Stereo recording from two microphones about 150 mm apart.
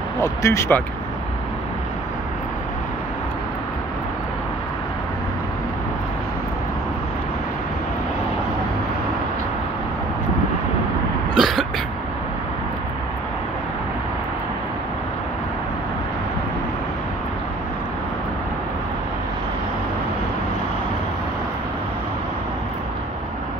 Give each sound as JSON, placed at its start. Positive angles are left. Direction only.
{"t": 0.2, "sound": "speech", "side_deg": 20}
{"t": 11.3, "sound": "cough", "side_deg": 0}